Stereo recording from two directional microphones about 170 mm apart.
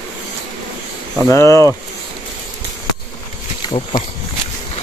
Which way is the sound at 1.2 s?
15° left (ahead or behind).